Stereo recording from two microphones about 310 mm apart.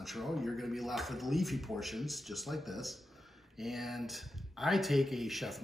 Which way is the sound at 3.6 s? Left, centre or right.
Centre.